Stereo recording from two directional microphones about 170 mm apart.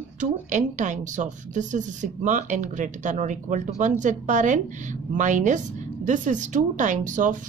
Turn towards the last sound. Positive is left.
turn(degrees=-50)  # may be behind; listen again after turning